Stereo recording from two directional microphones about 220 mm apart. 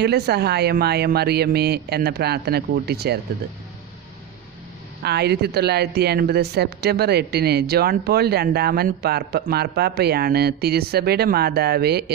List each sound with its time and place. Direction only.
0.0 s a woman's voice: 45° right (ahead or behind)
5.0 s a woman's voice: 50° right (ahead or behind)